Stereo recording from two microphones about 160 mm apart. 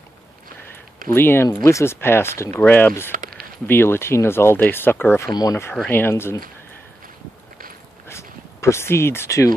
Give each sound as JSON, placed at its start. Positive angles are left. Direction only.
{"t": 1.0, "sound": "speech", "side_deg": 15}
{"t": 3.1, "sound": "a sound", "side_deg": -55}
{"t": 3.6, "sound": "speech", "side_deg": 15}
{"t": 8.1, "sound": "speech", "side_deg": 15}